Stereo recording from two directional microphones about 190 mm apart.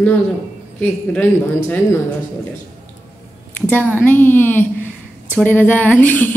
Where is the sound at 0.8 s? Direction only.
10° left (ahead or behind).